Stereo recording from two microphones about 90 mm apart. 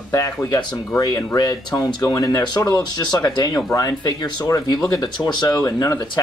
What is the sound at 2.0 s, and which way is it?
Speech, 40° left (ahead or behind).